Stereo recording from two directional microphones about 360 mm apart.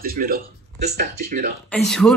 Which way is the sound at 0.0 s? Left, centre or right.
Right.